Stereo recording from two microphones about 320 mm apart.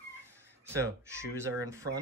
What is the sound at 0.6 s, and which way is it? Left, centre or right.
Speech, centre.